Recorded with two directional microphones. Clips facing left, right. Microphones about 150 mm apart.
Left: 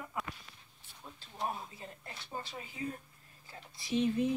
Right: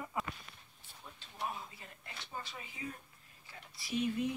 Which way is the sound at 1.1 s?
35° left (ahead or behind).